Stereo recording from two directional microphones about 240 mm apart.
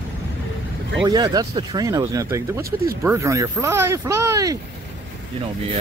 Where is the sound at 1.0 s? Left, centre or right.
Centre.